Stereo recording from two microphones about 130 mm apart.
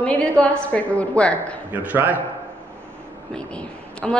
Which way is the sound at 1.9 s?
15° right (ahead or behind).